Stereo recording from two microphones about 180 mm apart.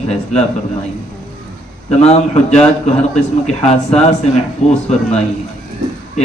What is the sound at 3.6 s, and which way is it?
Speech, 35° left (ahead or behind).